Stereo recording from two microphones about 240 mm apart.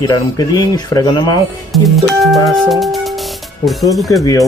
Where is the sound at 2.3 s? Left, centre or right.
Centre.